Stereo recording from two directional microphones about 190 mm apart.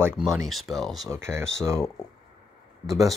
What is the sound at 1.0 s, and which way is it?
Speech, 15° right (ahead or behind).